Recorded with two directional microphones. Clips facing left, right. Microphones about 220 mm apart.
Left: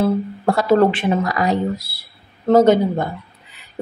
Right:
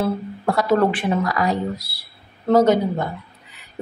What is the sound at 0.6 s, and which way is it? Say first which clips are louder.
Speech: left 3 dB; 25° left (ahead or behind).